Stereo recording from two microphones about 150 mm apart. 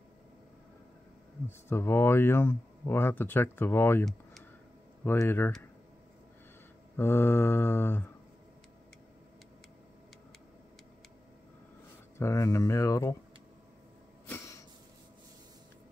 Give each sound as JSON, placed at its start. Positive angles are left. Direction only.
{"t": 1.7, "sound": "speech", "side_deg": 15}
{"t": 5.0, "sound": "speech", "side_deg": 15}
{"t": 7.0, "sound": "speech", "side_deg": 15}
{"t": 12.2, "sound": "speech", "side_deg": 20}
{"t": 14.2, "sound": "a sound", "side_deg": 15}